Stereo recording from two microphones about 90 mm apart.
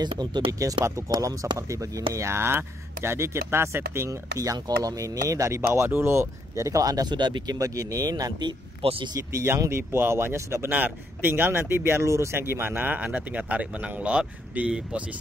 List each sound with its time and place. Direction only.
0.0 s speech: 55° right (ahead or behind)
0.5 s speech: 40° right (ahead or behind)
8.8 s speech: 90° right
9.3 s speech: 30° right (ahead or behind); by 15.0 s 15° right (ahead or behind)